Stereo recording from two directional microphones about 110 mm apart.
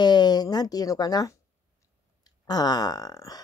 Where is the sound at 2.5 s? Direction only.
35° left (ahead or behind).